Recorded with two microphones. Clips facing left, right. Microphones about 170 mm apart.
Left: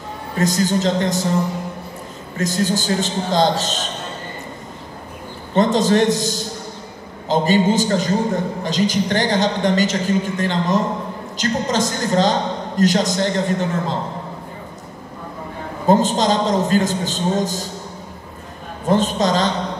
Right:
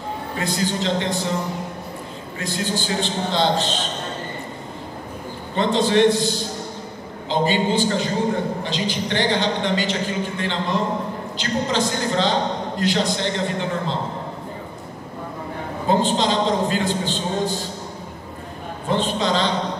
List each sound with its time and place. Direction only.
0.4 s a man's voice: 45° left (ahead or behind)
2.3 s a man's voice: 45° left (ahead or behind)
5.6 s a man's voice: 45° left (ahead or behind)
15.9 s a man's voice: 45° left (ahead or behind)
18.9 s a man's voice: 45° left (ahead or behind)